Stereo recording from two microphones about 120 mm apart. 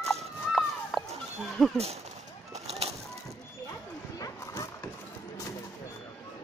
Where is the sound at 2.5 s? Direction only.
60° right (ahead or behind).